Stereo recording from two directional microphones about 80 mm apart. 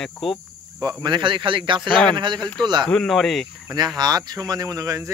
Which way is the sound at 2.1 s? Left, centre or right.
Right.